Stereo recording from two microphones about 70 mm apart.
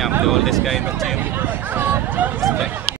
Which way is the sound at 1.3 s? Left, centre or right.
Right.